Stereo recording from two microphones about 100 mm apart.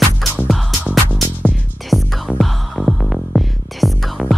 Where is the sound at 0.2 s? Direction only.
Centre (ahead or behind).